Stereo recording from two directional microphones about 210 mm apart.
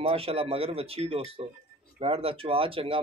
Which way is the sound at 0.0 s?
30° right (ahead or behind).